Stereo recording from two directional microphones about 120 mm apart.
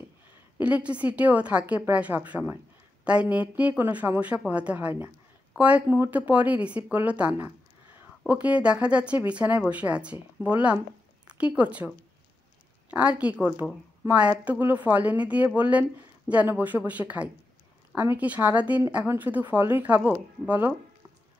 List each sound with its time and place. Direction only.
0.6 s speech: 10° right (ahead or behind)
12.9 s speech: 10° right (ahead or behind)